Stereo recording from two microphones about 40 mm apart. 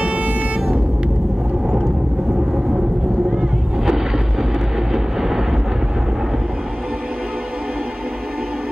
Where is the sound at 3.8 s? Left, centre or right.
Centre.